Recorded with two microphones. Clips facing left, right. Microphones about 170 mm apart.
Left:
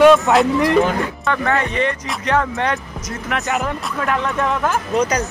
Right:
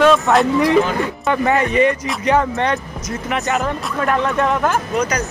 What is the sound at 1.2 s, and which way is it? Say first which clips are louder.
Speech: right 4 dB; 15° right (ahead or behind).